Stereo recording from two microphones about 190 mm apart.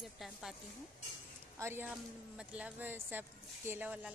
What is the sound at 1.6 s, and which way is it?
Speech, 10° right (ahead or behind).